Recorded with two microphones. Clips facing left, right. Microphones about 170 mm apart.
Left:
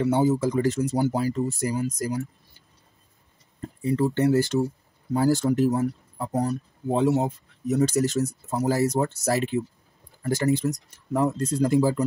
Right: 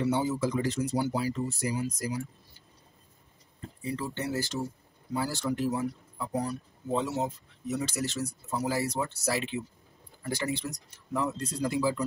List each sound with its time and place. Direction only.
0.0 s speech: 50° left (ahead or behind)
3.8 s speech: 50° left (ahead or behind)
5.1 s speech: 45° left (ahead or behind)
7.7 s speech: 40° left (ahead or behind)